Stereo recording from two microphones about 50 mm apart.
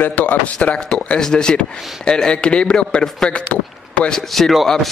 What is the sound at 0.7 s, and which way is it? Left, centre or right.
A man's voice, centre.